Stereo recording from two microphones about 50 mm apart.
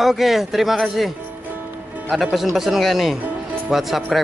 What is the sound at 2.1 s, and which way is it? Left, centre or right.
A woman's voice, centre.